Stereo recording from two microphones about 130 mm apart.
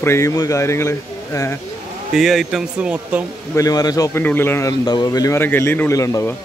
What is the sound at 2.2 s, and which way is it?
Speech, centre (ahead or behind).